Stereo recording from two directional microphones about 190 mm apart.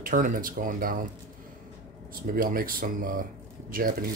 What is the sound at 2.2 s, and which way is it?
Speech, 50° right (ahead or behind).